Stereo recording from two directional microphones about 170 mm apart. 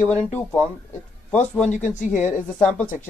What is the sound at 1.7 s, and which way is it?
Speech, 45° left (ahead or behind).